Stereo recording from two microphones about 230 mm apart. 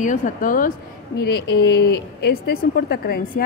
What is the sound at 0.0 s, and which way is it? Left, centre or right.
A woman's voice, left.